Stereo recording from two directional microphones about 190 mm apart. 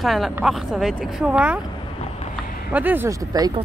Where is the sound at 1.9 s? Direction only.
30° left (ahead or behind).